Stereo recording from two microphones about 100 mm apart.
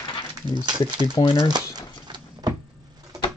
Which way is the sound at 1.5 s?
45° right (ahead or behind).